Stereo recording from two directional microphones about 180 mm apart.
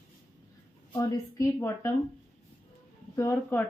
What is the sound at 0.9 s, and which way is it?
Speech, 15° left (ahead or behind).